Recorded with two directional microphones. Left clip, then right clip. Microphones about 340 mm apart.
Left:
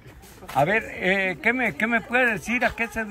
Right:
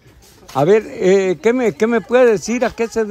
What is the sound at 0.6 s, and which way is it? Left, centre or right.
A man's voice, centre.